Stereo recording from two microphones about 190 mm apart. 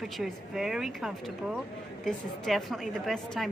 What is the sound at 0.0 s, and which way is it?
A woman's voice, centre (ahead or behind).